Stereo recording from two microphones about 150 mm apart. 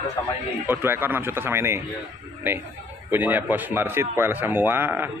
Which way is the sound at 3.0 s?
15° right (ahead or behind).